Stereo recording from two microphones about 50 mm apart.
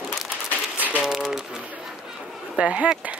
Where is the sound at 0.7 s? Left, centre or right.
Right.